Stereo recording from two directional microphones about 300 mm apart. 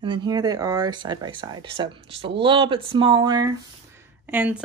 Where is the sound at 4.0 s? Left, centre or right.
Centre.